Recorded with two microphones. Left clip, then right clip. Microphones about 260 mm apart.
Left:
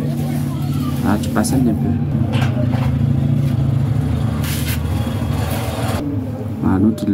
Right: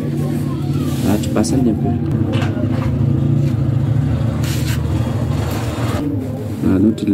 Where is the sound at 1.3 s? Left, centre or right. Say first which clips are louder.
Right 1 dB; centre.